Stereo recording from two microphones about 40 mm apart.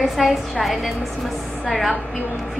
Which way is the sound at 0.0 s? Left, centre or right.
Centre.